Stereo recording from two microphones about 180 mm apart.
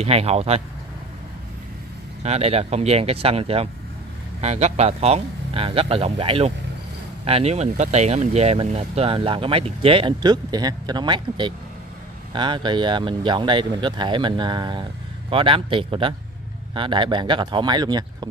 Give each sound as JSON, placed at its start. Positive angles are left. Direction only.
{"t": 0.0, "sound": "speech", "side_deg": -35}
{"t": 2.2, "sound": "speech", "side_deg": -35}